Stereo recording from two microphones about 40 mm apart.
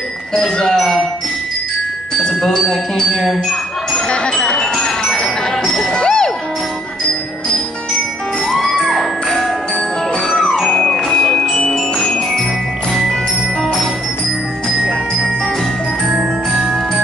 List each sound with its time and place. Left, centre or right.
0.7 s speech: centre
2.4 s speech: centre
4.1 s music: left
8.5 s music: centre
10.4 s music: centre
11.1 s music: left